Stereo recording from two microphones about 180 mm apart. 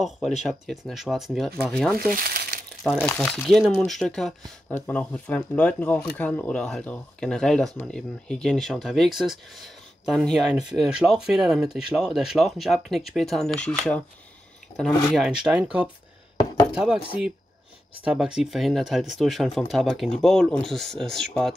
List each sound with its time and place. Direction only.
0.4 s speech: centre (ahead or behind)
2.1 s crumpling: 55° right (ahead or behind)
2.8 s speech: 5° left (ahead or behind)
18.0 s speech: 5° right (ahead or behind)